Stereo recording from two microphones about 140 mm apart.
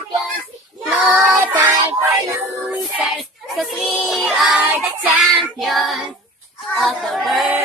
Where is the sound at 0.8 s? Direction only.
Centre (ahead or behind).